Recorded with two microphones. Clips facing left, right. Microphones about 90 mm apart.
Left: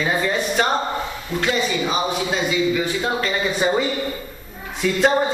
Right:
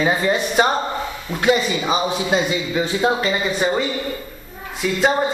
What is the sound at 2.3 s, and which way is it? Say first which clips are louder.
Speech: even; 25° right (ahead or behind).